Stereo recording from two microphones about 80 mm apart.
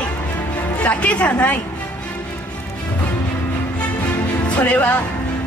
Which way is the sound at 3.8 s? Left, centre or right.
Centre.